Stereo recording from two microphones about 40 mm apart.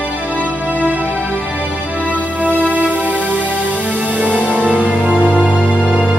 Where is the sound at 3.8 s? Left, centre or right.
Right.